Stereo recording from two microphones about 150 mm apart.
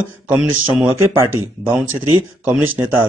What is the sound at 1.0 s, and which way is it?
Speech, 20° right (ahead or behind).